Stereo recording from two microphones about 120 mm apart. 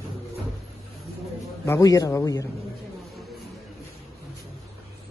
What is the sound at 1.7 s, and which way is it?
Speech, 30° left (ahead or behind).